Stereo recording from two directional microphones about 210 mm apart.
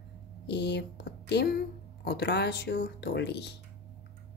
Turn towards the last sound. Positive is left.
turn(degrees=55)  # may be behind; listen again after turning